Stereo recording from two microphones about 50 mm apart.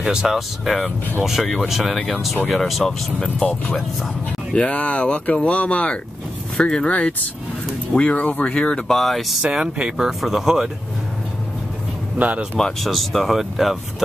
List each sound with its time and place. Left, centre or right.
0.0 s speech: centre
3.4 s speech: centre
4.6 s speech: left
6.9 s speech: left
8.9 s speech: centre
9.4 s speech: centre
12.2 s speech: right
12.8 s speech: centre